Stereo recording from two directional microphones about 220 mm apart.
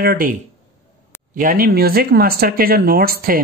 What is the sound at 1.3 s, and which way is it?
Speech, 40° right (ahead or behind).